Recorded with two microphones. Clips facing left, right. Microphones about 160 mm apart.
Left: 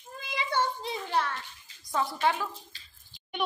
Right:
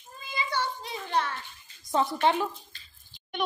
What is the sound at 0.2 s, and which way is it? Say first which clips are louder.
Child singing: right 1 dB; 80° left.